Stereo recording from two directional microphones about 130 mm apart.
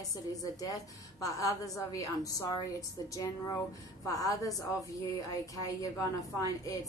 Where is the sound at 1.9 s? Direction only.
25° left (ahead or behind).